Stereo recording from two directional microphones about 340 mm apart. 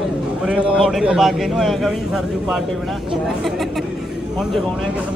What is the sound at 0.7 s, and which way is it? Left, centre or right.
A man's voice, centre.